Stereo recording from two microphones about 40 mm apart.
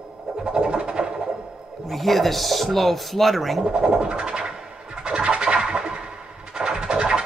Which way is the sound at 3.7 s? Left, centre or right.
Right.